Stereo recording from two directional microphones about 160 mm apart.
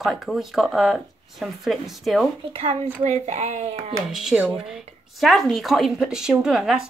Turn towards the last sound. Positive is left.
turn(degrees=-5)  # may be behind; listen again after turning